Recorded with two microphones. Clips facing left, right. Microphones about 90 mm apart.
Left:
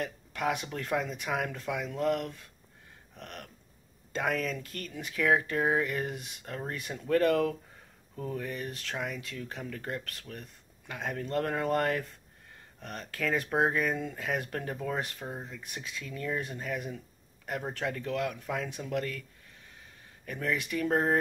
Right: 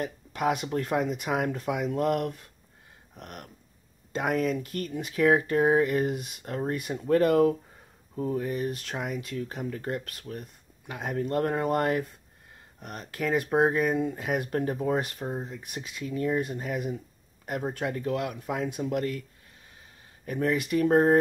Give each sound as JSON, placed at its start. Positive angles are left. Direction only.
{"t": 0.0, "sound": "speech", "side_deg": -25}
{"t": 2.0, "sound": "speech", "side_deg": -45}
{"t": 3.2, "sound": "speech", "side_deg": -25}
{"t": 13.0, "sound": "speech", "side_deg": -20}
{"t": 20.2, "sound": "speech", "side_deg": -30}